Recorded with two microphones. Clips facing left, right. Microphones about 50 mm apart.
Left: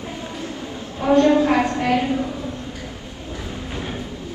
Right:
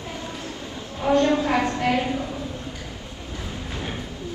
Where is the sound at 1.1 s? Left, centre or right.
Left.